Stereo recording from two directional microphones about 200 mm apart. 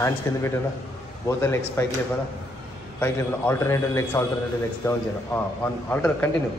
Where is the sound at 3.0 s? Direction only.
15° left (ahead or behind).